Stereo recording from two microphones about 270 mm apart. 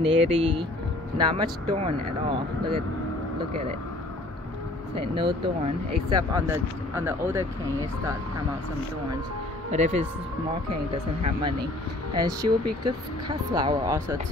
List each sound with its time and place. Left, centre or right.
0.0 s speech: right
5.0 s speech: centre
9.7 s speech: right
12.2 s speech: centre